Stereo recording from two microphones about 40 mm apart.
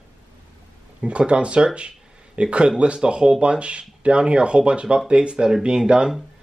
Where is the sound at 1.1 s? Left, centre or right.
Right.